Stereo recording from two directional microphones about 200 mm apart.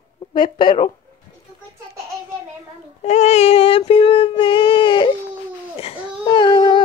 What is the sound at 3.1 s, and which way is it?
Child singing, 35° left (ahead or behind).